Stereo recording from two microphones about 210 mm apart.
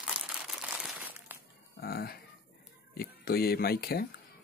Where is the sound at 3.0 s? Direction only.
45° left (ahead or behind).